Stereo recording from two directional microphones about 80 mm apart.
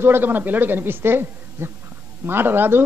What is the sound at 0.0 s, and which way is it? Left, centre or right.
Speech, right.